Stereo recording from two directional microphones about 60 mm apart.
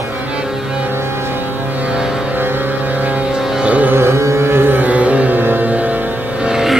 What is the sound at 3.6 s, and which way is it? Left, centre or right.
Music, right.